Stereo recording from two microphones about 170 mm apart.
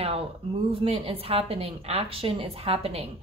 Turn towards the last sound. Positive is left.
turn(degrees=-35)  # may be behind; listen again after turning